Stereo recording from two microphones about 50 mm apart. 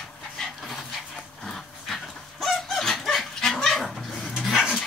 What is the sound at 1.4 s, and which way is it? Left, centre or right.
Dog, centre.